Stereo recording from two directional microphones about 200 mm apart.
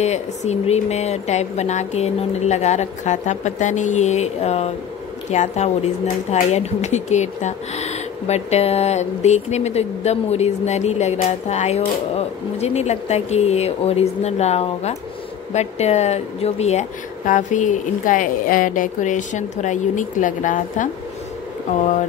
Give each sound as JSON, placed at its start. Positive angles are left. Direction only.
{"t": 0.0, "sound": "speech", "side_deg": 35}